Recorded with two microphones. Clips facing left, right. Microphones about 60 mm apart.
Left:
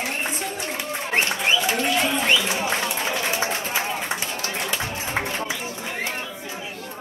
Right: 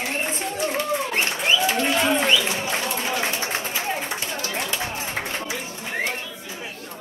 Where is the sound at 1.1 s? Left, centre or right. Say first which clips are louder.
Left 4 dB; left.